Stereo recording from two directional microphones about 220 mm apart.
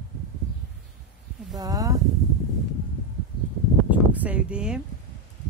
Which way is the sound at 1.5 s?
15° right (ahead or behind).